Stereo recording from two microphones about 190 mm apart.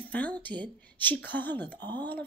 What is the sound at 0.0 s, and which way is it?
A woman's voice, 10° left (ahead or behind).